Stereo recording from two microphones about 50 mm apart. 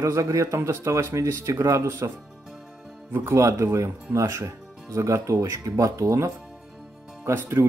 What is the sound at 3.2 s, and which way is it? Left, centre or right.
Speech, right.